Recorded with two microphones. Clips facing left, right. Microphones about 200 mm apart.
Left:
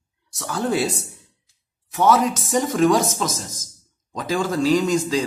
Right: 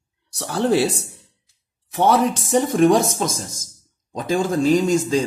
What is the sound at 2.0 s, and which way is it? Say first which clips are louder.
Speech: right 1 dB; 30° right (ahead or behind).